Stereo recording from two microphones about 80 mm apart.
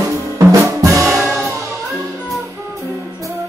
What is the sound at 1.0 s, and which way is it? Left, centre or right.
Music, centre.